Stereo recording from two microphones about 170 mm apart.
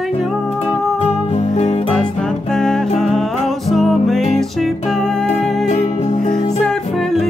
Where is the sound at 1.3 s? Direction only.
40° left (ahead or behind).